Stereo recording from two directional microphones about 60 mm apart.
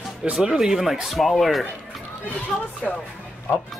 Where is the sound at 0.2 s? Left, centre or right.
Centre.